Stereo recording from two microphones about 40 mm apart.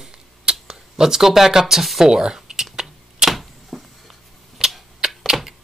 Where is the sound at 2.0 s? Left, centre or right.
Centre.